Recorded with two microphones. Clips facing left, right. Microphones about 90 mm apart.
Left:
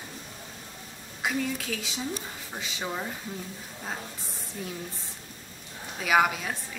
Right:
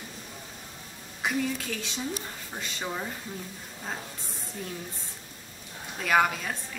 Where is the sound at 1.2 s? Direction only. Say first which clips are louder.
Even; centre (ahead or behind).